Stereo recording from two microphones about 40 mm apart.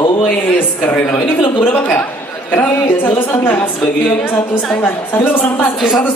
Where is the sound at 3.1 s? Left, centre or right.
Left.